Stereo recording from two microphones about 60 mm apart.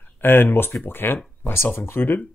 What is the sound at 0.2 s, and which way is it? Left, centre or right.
Speech, left.